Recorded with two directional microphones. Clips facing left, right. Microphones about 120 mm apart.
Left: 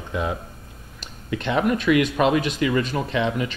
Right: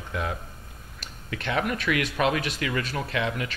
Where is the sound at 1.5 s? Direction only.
5° left (ahead or behind).